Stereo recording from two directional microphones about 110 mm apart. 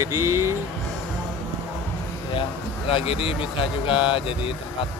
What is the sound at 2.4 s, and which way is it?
Speech, 55° left (ahead or behind).